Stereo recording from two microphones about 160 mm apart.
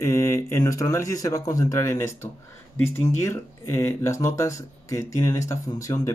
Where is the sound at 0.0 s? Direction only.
15° left (ahead or behind).